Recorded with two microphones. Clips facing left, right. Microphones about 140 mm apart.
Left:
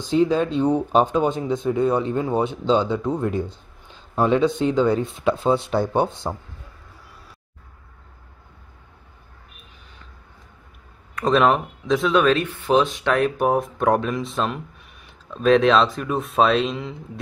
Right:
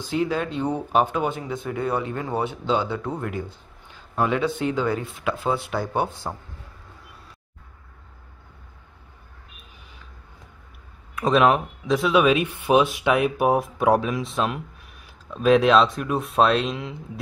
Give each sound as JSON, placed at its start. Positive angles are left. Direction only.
{"t": 0.0, "sound": "speech", "side_deg": 20}
{"t": 11.1, "sound": "speech", "side_deg": 0}